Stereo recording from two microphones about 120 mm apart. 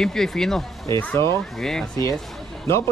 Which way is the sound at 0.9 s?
20° left (ahead or behind).